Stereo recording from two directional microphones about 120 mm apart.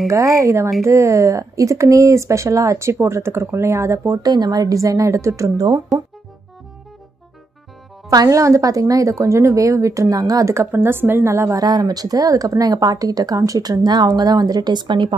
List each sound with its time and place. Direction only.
0.4 s speech: 25° right (ahead or behind)
8.1 s speech: 30° right (ahead or behind)